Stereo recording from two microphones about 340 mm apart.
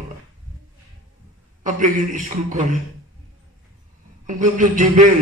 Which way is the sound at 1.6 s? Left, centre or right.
Right.